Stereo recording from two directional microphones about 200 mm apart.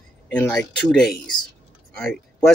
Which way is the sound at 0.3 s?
5° left (ahead or behind).